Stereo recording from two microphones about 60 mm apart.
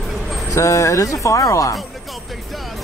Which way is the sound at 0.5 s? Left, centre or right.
Left.